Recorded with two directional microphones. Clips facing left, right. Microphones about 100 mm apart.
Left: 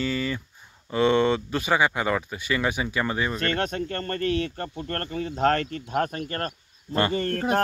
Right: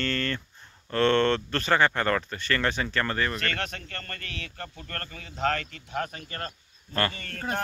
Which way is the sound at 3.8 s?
30° left (ahead or behind).